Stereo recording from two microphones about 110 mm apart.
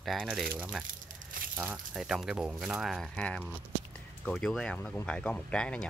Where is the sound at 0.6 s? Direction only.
10° right (ahead or behind).